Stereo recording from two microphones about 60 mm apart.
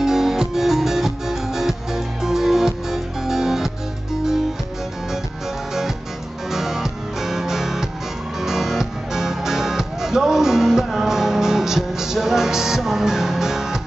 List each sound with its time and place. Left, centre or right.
0.0 s music: centre
6.5 s music: centre